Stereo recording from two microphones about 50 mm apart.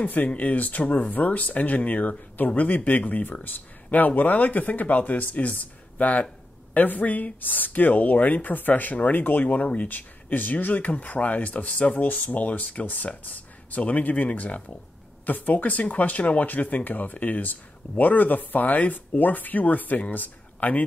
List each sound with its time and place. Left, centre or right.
0.0 s speech: left